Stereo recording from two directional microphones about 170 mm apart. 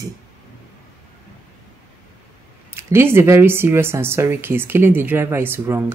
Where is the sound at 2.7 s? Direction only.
15° right (ahead or behind).